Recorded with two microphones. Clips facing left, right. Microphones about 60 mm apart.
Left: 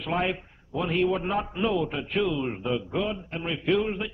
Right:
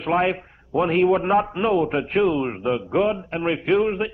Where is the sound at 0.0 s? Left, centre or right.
Right.